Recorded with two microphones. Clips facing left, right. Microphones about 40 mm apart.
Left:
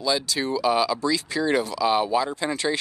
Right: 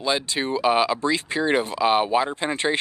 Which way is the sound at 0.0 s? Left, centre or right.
Right.